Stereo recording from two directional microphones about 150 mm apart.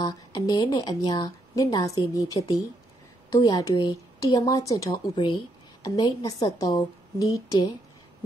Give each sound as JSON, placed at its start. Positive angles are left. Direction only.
{"t": 0.0, "sound": "a woman's voice", "side_deg": 30}